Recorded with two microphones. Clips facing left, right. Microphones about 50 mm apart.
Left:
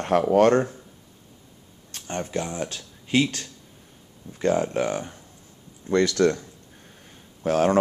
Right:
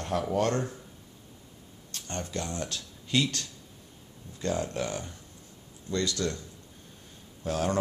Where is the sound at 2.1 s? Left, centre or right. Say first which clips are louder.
Left 6 dB; left.